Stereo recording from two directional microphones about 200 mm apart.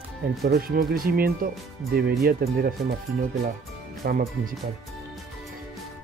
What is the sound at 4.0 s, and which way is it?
Speech, 40° right (ahead or behind).